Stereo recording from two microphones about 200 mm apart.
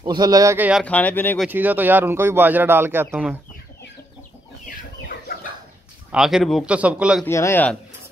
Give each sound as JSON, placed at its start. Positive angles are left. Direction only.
{"t": 0.0, "sound": "speech", "side_deg": -20}
{"t": 0.8, "sound": "speech", "side_deg": 5}
{"t": 1.5, "sound": "speech", "side_deg": -10}
{"t": 6.1, "sound": "a man's voice", "side_deg": 0}
{"t": 7.2, "sound": "speech", "side_deg": 15}